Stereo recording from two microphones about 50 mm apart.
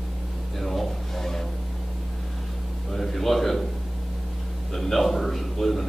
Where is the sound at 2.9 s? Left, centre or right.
Centre.